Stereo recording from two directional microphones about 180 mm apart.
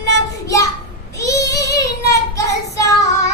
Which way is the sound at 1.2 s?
15° left (ahead or behind).